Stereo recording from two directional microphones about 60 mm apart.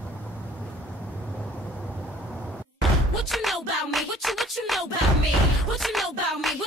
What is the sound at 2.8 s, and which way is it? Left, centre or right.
Music, centre.